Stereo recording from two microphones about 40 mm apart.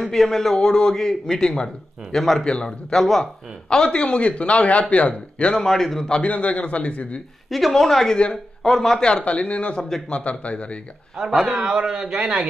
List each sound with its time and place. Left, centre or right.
0.0 s a man's voice: centre
0.7 s a man's voice: left; by 2.4 s centre
2.4 s a man's voice: centre
3.0 s speech: centre
3.7 s a man's voice: left
5.5 s a man's voice: centre
6.2 s speech: left
7.4 s a man's voice: centre
9.2 s speech: left
9.8 s a man's voice: centre
10.4 s speech: left
11.2 s a man's voice: centre